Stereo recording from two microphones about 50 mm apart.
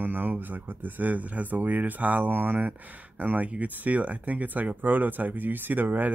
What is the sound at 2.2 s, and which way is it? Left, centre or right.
Speech, right.